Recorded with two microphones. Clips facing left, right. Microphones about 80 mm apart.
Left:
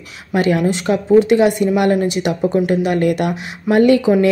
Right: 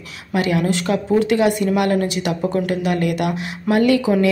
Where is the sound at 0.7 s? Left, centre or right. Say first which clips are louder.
Left 4 dB; left.